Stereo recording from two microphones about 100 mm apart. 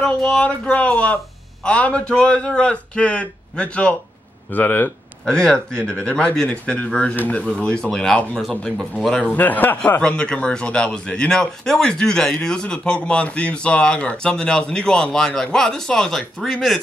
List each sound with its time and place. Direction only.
0.0 s speech: 10° left (ahead or behind)
5.2 s speech: 10° left (ahead or behind)